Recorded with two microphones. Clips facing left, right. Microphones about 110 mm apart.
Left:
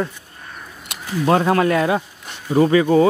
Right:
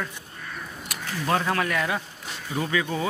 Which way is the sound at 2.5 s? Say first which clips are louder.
Left 13 dB; 40° left (ahead or behind).